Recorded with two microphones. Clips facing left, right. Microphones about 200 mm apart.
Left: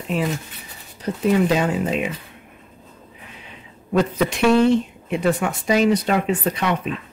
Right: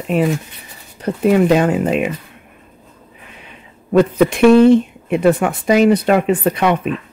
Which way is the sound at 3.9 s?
55° right (ahead or behind).